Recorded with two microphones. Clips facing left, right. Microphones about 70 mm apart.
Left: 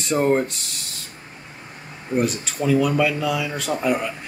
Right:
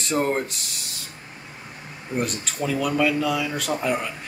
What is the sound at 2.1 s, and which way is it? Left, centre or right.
Speech, centre.